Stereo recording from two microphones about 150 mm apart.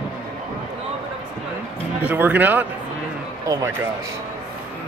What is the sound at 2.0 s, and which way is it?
Speech, 10° right (ahead or behind).